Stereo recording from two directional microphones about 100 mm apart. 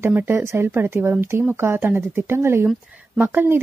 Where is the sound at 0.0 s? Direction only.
20° right (ahead or behind).